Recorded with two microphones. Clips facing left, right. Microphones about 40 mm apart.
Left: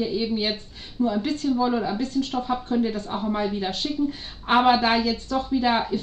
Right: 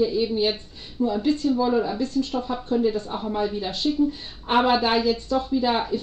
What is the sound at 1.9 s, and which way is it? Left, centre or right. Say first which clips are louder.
A woman's voice: even; left.